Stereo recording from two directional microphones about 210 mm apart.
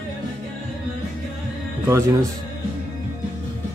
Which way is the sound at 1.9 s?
15° right (ahead or behind).